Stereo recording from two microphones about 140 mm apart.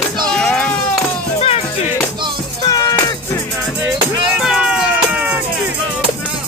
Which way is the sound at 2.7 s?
25° left (ahead or behind).